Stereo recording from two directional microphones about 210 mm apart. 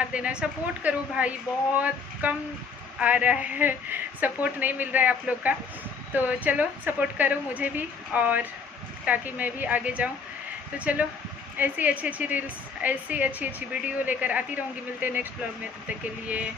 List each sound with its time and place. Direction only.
0.1 s a woman's voice: 5° right (ahead or behind)